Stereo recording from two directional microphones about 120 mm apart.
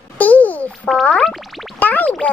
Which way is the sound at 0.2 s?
15° left (ahead or behind).